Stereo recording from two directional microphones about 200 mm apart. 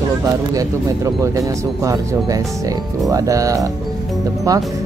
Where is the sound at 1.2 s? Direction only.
15° right (ahead or behind).